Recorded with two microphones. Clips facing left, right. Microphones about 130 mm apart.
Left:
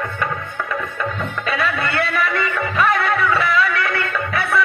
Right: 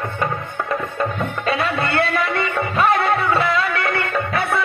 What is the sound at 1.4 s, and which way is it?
Music, 30° right (ahead or behind).